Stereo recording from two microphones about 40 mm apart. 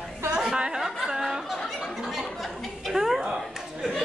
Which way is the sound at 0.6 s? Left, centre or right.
Centre.